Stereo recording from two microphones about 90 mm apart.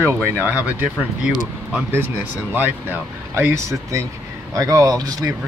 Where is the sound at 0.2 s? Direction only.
20° right (ahead or behind).